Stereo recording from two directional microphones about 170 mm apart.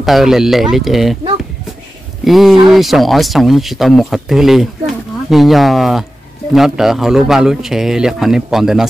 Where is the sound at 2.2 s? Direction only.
Centre (ahead or behind).